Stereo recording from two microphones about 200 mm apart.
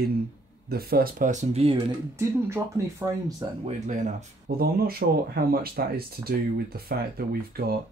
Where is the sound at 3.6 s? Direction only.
35° right (ahead or behind).